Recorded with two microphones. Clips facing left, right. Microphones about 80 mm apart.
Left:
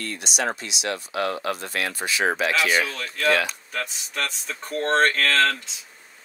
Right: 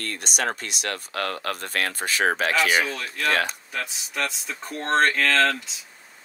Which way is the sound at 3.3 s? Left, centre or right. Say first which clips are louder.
Left 2 dB; right.